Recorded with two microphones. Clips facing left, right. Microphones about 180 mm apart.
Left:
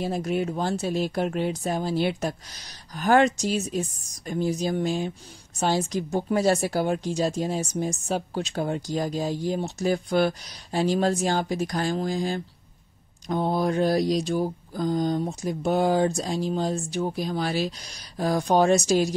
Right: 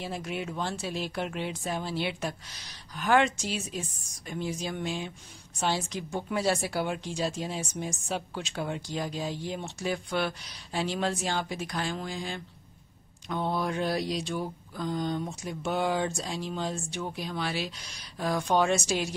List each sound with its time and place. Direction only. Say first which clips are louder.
0.0 s speech: left 8 dB; 40° left (ahead or behind)